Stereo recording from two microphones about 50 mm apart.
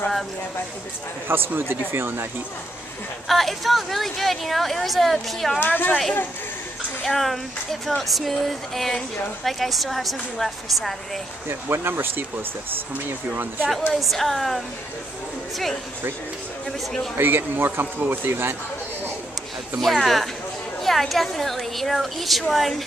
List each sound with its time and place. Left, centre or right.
1.3 s a man's voice: right
3.3 s speech: centre
5.6 s a woman's voice: left
7.1 s speech: centre
11.4 s a man's voice: right
13.9 s speech: centre
17.2 s a man's voice: right
19.8 s speech: centre